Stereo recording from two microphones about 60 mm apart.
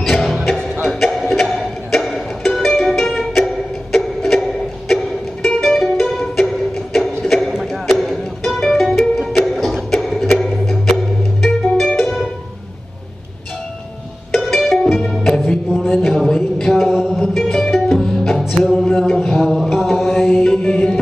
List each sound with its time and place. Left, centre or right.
0.0 s music: centre
7.2 s a sound: centre
7.8 s music: centre
14.3 s music: centre
15.7 s a sound: centre
17.2 s music: centre